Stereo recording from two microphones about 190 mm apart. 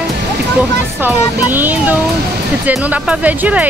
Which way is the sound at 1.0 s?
10° right (ahead or behind).